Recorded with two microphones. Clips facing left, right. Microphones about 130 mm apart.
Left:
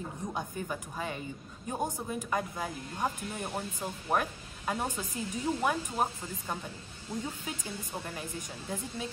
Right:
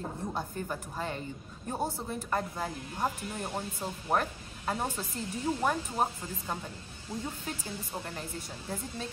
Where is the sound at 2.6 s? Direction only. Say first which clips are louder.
Right 1 dB; 5° right (ahead or behind).